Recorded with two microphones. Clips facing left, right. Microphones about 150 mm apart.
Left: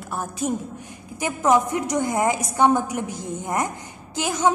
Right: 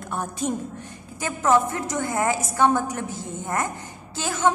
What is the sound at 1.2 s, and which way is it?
A woman's voice, 15° left (ahead or behind).